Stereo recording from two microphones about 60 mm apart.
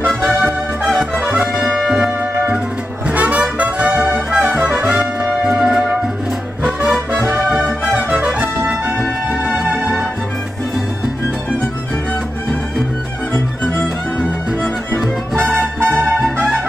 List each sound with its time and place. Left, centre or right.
0.8 s music: centre
1.6 s brass instrument: centre
3.1 s brass instrument: right
4.5 s music: right
5.4 s music: centre
7.1 s music: right
7.9 s brass instrument: right
9.6 s music: centre
15.3 s music: right
15.9 s brass instrument: centre